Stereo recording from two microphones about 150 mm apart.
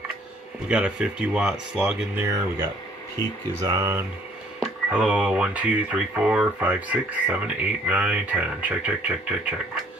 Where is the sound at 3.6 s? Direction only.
25° right (ahead or behind).